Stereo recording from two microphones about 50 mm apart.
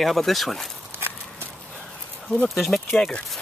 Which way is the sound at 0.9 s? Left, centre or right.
Right.